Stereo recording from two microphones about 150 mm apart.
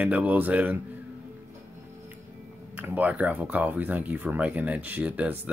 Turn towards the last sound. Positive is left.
turn(degrees=-10)  # may be behind; listen again after turning